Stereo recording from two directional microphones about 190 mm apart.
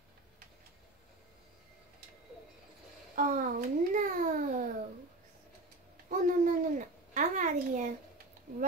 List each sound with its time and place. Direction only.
3.2 s a child's voice: 45° right (ahead or behind)
6.0 s babbling: 45° right (ahead or behind)